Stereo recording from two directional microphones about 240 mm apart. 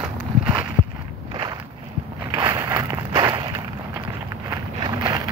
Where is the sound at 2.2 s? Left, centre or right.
Centre.